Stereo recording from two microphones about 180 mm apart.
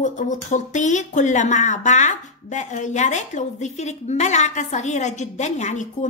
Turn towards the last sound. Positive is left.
turn(degrees=40)  # may be behind; listen again after turning